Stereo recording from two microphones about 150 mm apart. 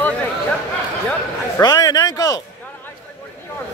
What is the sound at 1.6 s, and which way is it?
Speech, 25° left (ahead or behind).